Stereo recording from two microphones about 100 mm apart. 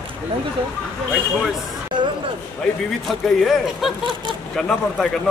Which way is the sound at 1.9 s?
50° right (ahead or behind).